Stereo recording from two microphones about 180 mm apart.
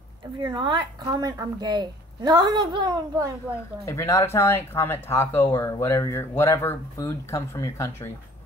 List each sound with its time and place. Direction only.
0.4 s speech: 25° right (ahead or behind)
3.8 s speech: 15° left (ahead or behind)